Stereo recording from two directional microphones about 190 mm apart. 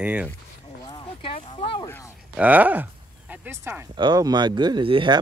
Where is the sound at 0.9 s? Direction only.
30° left (ahead or behind).